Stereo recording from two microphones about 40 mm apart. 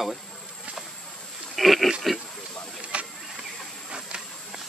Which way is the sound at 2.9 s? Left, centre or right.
Right.